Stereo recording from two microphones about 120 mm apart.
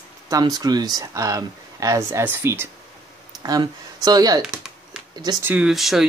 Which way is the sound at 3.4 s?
35° right (ahead or behind).